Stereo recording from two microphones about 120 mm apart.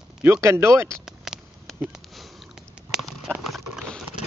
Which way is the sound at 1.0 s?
5° right (ahead or behind).